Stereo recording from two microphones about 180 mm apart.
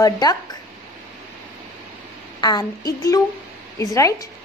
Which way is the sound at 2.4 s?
20° left (ahead or behind).